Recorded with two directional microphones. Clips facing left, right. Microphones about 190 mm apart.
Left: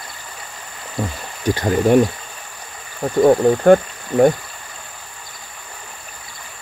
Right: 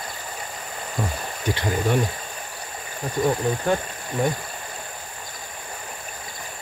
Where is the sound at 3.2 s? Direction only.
60° left (ahead or behind).